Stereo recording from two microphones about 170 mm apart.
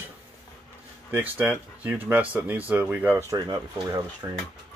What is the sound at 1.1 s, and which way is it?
Speech, 10° right (ahead or behind).